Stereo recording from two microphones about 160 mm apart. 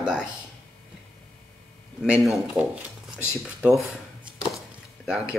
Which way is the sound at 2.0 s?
Centre (ahead or behind).